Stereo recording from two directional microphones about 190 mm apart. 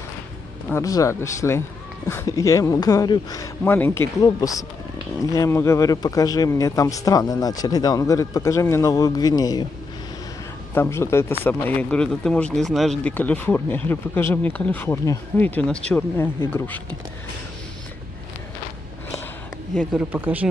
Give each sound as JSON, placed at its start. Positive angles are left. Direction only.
{"t": 0.7, "sound": "speech", "side_deg": 15}
{"t": 10.7, "sound": "speech", "side_deg": 15}
{"t": 19.7, "sound": "speech", "side_deg": 5}
{"t": 20.1, "sound": "speech", "side_deg": -10}